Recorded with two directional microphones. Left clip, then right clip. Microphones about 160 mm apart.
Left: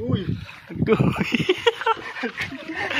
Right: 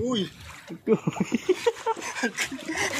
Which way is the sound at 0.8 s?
15° right (ahead or behind).